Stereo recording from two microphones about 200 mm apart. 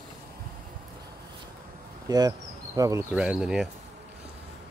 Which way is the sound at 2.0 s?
20° right (ahead or behind).